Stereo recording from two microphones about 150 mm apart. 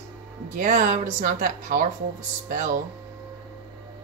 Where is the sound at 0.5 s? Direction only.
60° right (ahead or behind).